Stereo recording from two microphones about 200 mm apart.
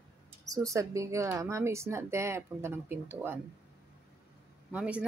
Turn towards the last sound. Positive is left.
turn(degrees=-5)  # may be behind; listen again after turning